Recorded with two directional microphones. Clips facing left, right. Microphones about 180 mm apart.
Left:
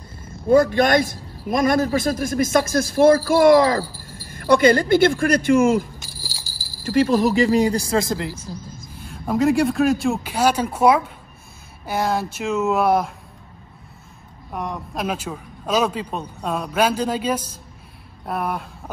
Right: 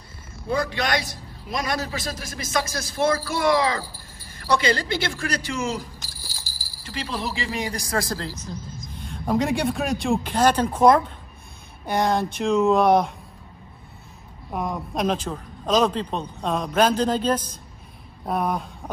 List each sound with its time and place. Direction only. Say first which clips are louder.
0.5 s a man's voice: left 9 dB; 50° left (ahead or behind); by 8.0 s 30° left (ahead or behind)
8.0 s speech: left 5 dB; 15° left (ahead or behind)
9.1 s speech: left 4 dB; centre (ahead or behind)
14.5 s speech: right 1 dB; centre (ahead or behind)